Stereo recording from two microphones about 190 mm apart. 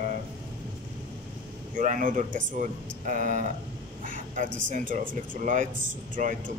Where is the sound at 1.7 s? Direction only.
40° right (ahead or behind).